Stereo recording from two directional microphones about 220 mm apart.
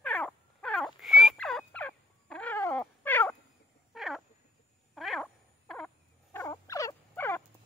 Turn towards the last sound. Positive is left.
turn(degrees=10)  # may be behind; listen again after turning